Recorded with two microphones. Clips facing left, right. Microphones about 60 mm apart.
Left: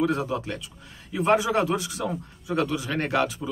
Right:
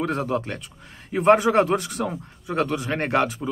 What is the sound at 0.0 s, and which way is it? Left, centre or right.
Speech, right.